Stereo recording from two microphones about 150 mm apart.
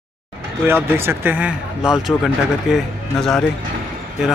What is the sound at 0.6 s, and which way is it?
A man's voice, 15° right (ahead or behind).